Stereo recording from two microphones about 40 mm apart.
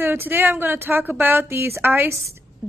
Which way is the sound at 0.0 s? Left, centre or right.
Right.